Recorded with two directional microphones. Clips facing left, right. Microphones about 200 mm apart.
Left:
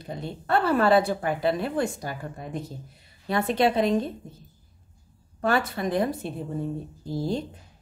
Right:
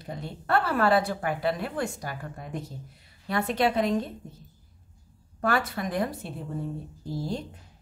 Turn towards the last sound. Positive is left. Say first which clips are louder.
# left 4 dB
turn(degrees=25)  # may be behind; listen again after turning